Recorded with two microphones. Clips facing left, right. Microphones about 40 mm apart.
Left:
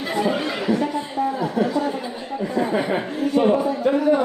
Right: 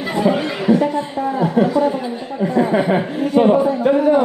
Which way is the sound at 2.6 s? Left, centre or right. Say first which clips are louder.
Right 6 dB; centre.